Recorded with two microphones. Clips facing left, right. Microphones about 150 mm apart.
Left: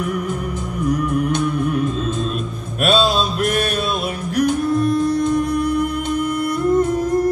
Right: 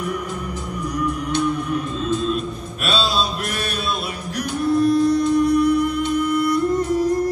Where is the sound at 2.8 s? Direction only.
50° left (ahead or behind).